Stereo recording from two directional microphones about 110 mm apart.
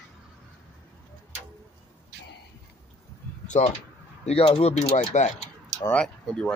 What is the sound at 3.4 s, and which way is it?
Speech, 90° left.